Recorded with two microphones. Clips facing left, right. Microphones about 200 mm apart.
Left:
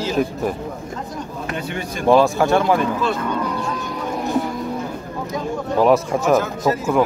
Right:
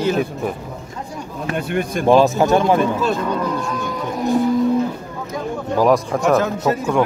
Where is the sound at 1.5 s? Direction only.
55° right (ahead or behind).